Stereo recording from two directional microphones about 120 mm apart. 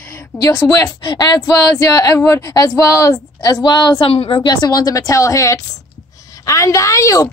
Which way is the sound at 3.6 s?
40° left (ahead or behind).